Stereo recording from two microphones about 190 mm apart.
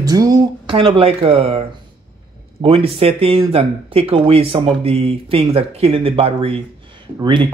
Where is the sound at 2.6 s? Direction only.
30° right (ahead or behind).